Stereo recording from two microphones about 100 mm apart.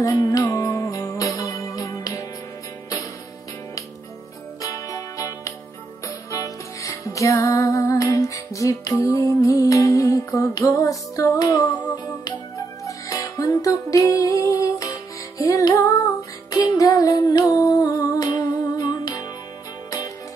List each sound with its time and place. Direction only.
0.0 s music: 35° left (ahead or behind)
4.6 s music: 35° left (ahead or behind)
12.8 s music: 35° left (ahead or behind)